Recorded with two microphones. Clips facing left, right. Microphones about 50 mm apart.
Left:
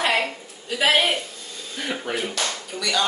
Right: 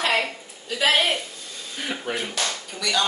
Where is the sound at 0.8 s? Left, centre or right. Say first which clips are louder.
Left 1 dB; centre.